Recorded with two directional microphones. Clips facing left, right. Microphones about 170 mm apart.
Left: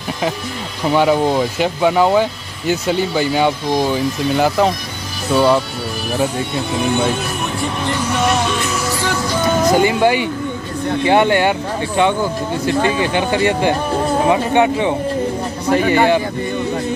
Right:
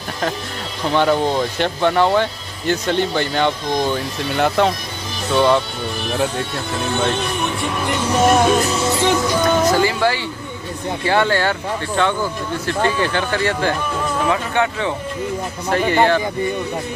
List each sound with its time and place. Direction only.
0.8 s speech: 10° left (ahead or behind)
6.5 s speech: 15° left (ahead or behind)
8.2 s music: 45° right (ahead or behind)
8.6 s music: 25° right (ahead or behind)
9.4 s speech: 10° left (ahead or behind)
13.8 s music: 40° left (ahead or behind)
14.2 s speech: 20° left (ahead or behind)